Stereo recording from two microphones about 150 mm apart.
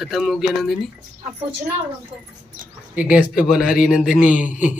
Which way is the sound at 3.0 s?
10° right (ahead or behind).